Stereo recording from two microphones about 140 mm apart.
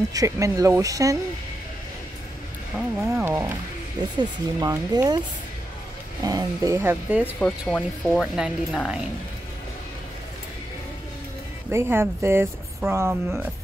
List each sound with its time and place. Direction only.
0.1 s speech: 25° right (ahead or behind)
3.0 s speech: 15° right (ahead or behind)
4.2 s speech: 30° right (ahead or behind)
6.2 s speech: 25° right (ahead or behind)
7.3 s speech: 5° left (ahead or behind)
11.7 s speech: 15° right (ahead or behind)